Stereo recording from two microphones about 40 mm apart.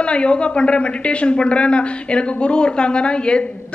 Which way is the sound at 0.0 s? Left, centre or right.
Left.